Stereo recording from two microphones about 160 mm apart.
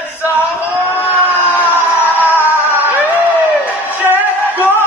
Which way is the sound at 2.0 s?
10° right (ahead or behind).